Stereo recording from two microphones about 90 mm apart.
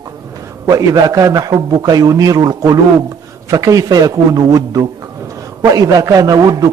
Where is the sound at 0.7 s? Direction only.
40° right (ahead or behind).